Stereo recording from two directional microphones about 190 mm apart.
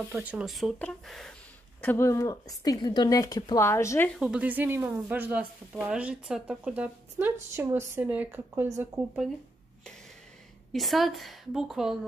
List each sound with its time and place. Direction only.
0.1 s a woman's voice: 5° right (ahead or behind); by 4.1 s 15° left (ahead or behind)
4.1 s speech: 5° right (ahead or behind)
10.7 s a woman's voice: centre (ahead or behind)